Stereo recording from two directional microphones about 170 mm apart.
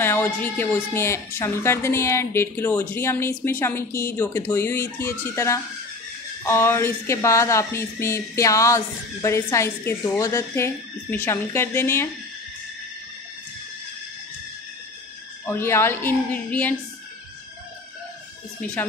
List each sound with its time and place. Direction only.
0.0 s speech: 15° left (ahead or behind)
15.4 s speech: 15° left (ahead or behind)